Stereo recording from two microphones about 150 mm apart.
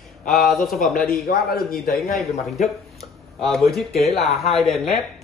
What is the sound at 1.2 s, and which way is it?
Speech, 90° left.